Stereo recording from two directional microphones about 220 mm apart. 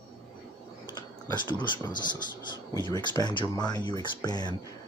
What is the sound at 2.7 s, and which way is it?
Speech, 20° left (ahead or behind).